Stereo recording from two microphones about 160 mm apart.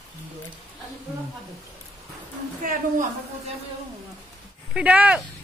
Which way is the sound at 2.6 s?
60° right (ahead or behind).